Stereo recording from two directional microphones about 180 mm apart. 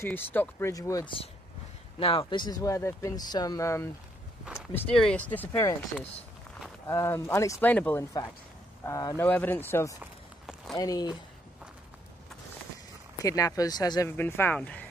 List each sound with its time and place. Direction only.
0.0 s speech: 10° left (ahead or behind)
2.0 s speech: 30° left (ahead or behind)
4.9 s speech: 5° left (ahead or behind)
6.9 s speech: 15° left (ahead or behind)
13.2 s speech: 20° left (ahead or behind)
14.1 s speech: 10° left (ahead or behind)